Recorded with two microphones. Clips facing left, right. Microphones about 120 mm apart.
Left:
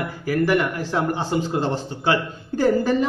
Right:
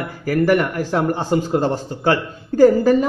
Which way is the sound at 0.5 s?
40° right (ahead or behind).